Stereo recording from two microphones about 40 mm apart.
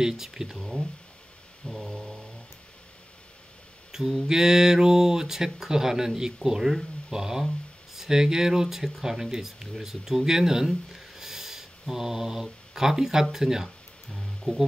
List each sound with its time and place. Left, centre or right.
0.0 s speech: centre
1.8 s a sound: centre
3.9 s mantra: centre
4.3 s speech: centre
10.9 s a sound: centre
11.9 s speech: centre
14.5 s speech: centre